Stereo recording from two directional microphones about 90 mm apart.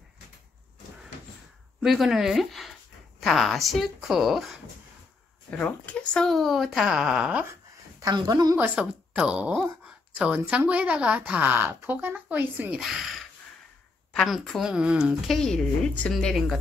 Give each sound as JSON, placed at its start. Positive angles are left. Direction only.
{"t": 1.8, "sound": "speech", "side_deg": 0}
{"t": 5.5, "sound": "speech", "side_deg": 15}
{"t": 8.0, "sound": "a woman's voice", "side_deg": -45}
{"t": 8.5, "sound": "a woman's voice", "side_deg": -15}
{"t": 12.7, "sound": "a woman's voice", "side_deg": -5}
{"t": 15.2, "sound": "speech", "side_deg": 5}